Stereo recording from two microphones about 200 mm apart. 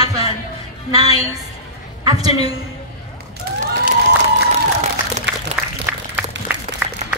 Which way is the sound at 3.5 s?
50° right (ahead or behind).